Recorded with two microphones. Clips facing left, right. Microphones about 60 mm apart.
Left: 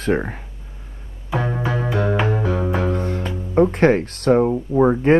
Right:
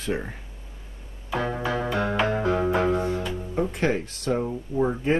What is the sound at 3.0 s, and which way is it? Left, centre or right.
Speech, left.